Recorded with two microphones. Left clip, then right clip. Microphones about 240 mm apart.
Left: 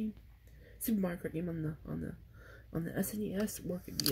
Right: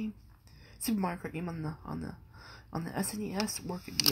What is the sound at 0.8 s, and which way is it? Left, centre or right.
A woman's voice, right.